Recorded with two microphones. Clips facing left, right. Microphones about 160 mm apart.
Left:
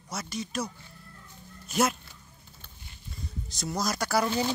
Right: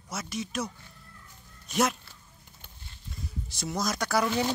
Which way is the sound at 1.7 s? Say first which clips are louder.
Even; centre (ahead or behind).